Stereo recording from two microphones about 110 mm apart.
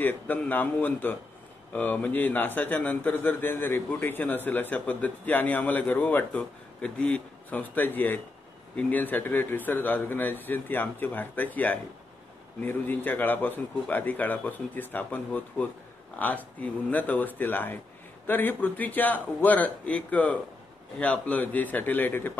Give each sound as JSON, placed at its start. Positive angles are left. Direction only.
{"t": 0.0, "sound": "a man's voice", "side_deg": 15}